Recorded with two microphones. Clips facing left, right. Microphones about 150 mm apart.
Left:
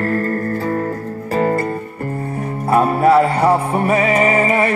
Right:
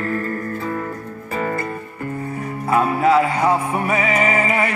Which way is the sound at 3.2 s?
35° left (ahead or behind).